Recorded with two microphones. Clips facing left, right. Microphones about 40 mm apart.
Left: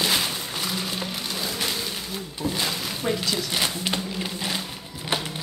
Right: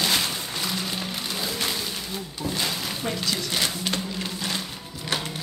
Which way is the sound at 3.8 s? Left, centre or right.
Centre.